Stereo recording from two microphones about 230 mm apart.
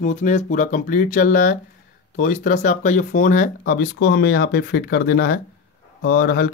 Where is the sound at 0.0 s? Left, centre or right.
Left.